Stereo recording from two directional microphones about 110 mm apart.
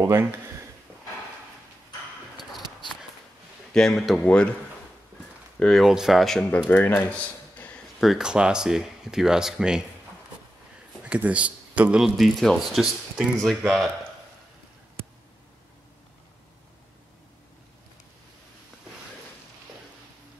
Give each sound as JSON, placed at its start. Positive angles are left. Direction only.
{"t": 0.0, "sound": "speech", "side_deg": -25}
{"t": 3.7, "sound": "speech", "side_deg": 5}
{"t": 4.2, "sound": "speech", "side_deg": 15}
{"t": 5.6, "sound": "speech", "side_deg": 0}
{"t": 6.7, "sound": "speech", "side_deg": 15}
{"t": 7.5, "sound": "a sound", "side_deg": 15}
{"t": 8.0, "sound": "speech", "side_deg": -5}
{"t": 11.1, "sound": "speech", "side_deg": -10}